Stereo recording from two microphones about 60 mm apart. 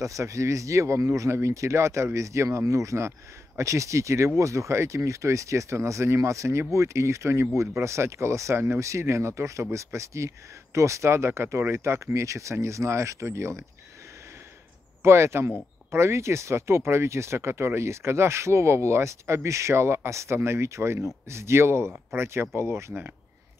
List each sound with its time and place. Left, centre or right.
0.0 s speech: right
15.0 s speech: right